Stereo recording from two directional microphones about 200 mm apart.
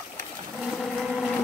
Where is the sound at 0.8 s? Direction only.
Centre (ahead or behind).